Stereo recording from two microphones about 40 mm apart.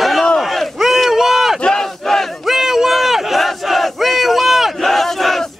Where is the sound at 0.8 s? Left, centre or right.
Centre.